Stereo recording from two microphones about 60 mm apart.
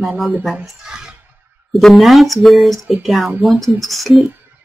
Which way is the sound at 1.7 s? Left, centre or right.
Centre.